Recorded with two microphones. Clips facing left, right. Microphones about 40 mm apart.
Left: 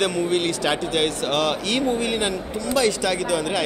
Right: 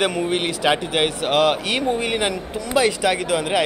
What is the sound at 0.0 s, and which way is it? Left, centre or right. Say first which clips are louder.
Speech: even; centre.